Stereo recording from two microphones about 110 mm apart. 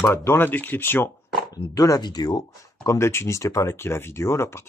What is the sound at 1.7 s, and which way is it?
Speech, 35° left (ahead or behind).